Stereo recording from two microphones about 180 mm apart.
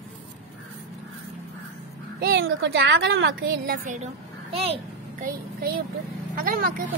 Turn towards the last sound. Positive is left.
turn(degrees=-55)  # may be behind; listen again after turning